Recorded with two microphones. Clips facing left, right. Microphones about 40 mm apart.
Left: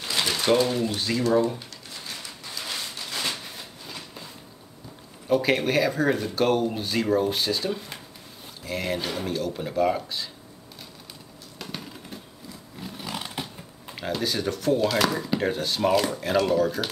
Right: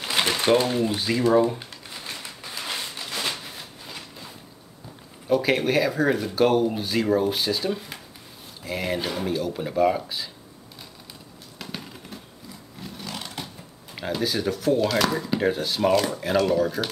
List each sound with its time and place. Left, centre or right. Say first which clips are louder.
0.0 s typewriter: right 3 dB; right
0.8 s a sound: right 2 dB; centre
5.3 s speech: right 1 dB; centre
11.5 s bird: even; centre
12.8 s a sound: left 1 dB; centre
13.9 s speech: right 1 dB; centre